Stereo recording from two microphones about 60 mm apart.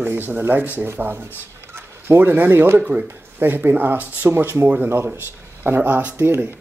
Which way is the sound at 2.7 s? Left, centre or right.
Right.